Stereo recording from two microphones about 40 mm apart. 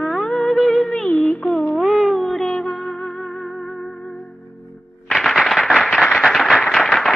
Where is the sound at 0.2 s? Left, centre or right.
Centre.